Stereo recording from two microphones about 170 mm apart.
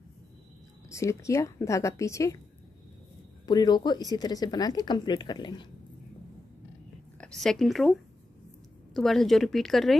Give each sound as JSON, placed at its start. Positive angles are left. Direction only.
{"t": 0.8, "sound": "speech", "side_deg": 15}
{"t": 3.4, "sound": "a woman's voice", "side_deg": 25}
{"t": 7.2, "sound": "speech", "side_deg": 5}